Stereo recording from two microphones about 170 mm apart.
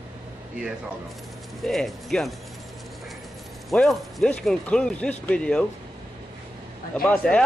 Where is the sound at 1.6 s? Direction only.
Centre (ahead or behind).